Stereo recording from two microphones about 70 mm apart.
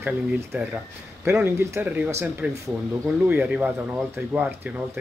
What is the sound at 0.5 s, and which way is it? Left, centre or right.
Speech, right.